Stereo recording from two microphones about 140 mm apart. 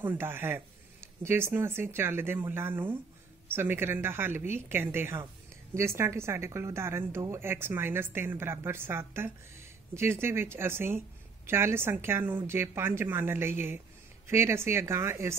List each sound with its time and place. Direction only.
0.0 s speech: 15° right (ahead or behind)